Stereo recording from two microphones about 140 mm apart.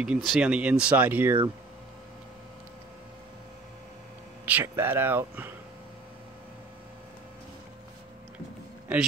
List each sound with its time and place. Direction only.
0.0 s speech: 5° right (ahead or behind)
4.5 s speech: 15° right (ahead or behind)